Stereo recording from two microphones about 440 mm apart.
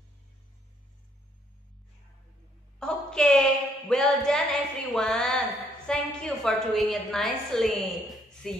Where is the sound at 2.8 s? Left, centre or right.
Centre.